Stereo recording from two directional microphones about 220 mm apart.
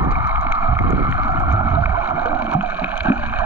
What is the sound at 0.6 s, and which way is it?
Boat, 15° right (ahead or behind).